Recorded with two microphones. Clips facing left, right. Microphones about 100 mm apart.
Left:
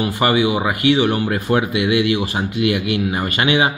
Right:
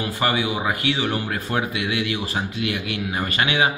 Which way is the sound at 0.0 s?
10° left (ahead or behind).